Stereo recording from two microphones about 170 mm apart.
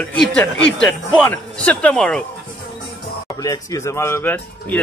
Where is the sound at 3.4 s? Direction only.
20° left (ahead or behind).